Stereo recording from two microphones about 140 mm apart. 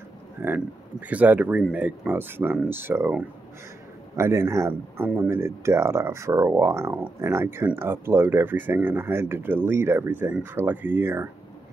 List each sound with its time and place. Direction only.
0.4 s speech: 15° right (ahead or behind)